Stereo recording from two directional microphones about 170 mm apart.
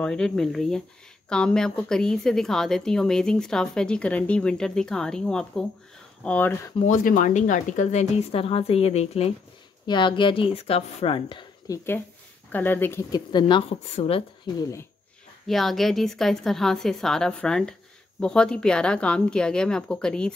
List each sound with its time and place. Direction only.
0.0 s a woman's voice: 5° left (ahead or behind)
6.8 s a woman's voice: 50° left (ahead or behind); by 13.2 s 15° left (ahead or behind)
13.3 s speech: 25° left (ahead or behind)
15.4 s a woman's voice: centre (ahead or behind)